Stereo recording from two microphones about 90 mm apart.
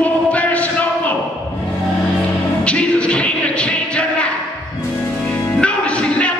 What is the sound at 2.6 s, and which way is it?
Music, 15° left (ahead or behind).